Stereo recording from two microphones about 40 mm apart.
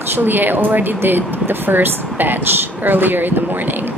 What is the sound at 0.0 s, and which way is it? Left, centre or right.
Speech, right.